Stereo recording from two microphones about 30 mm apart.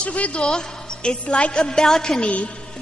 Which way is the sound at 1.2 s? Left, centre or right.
Left.